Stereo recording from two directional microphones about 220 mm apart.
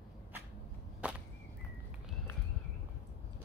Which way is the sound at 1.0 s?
5° right (ahead or behind).